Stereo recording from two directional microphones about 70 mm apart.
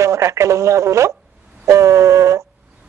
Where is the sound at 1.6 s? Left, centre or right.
Right.